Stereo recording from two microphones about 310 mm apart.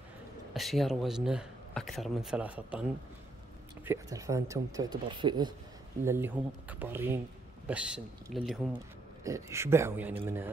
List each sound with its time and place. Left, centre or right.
0.6 s speech: centre
3.8 s speech: centre